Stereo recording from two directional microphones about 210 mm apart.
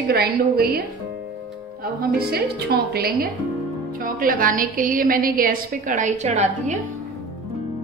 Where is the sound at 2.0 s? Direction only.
50° right (ahead or behind).